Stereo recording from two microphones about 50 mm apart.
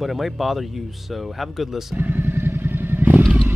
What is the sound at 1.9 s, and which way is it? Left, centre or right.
Vehicle, right.